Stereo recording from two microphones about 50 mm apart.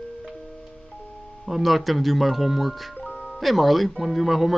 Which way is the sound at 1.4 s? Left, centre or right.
Centre.